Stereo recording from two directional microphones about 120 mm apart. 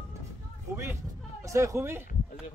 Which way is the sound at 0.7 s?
20° right (ahead or behind).